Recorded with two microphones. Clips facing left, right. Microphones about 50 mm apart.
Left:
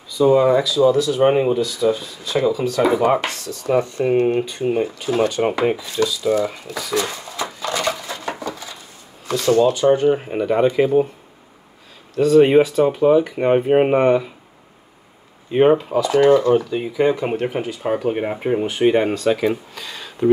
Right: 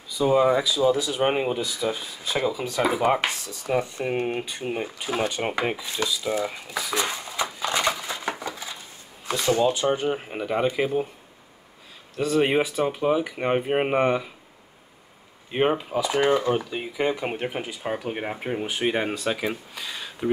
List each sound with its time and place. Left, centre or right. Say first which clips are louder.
0.2 s speech: left 6 dB; centre
4.0 s speech: left 9 dB; centre
7.6 s a sound: left 3 dB; centre
9.3 s speech: left 6 dB; centre
12.2 s speech: left 9 dB; centre
15.8 s speech: left 7 dB; centre
17.8 s speech: left 9 dB; centre
19.7 s a sound: left 2 dB; centre